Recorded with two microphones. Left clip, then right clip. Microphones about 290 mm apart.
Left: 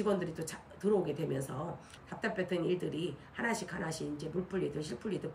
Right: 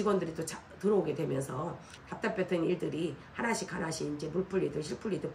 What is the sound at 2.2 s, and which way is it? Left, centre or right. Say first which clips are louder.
Speech: right 3 dB; centre.